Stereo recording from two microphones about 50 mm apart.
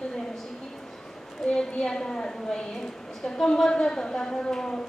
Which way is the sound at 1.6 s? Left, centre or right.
Centre.